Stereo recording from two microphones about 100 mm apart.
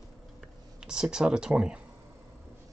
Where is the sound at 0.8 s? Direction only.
5° right (ahead or behind).